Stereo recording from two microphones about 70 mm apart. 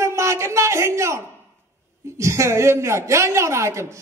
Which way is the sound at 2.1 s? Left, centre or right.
Right.